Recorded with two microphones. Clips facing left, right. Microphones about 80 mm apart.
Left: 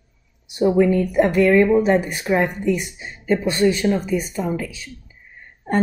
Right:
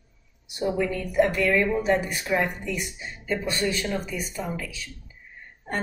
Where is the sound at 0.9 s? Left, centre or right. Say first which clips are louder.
Left 6 dB; left.